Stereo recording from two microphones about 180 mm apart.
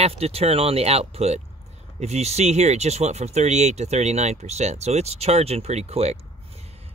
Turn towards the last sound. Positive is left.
turn(degrees=-35)  # may be behind; listen again after turning